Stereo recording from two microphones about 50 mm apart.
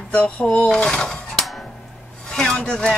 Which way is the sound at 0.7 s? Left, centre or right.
Centre.